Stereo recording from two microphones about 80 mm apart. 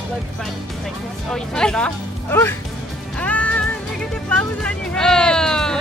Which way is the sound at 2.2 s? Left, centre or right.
Left.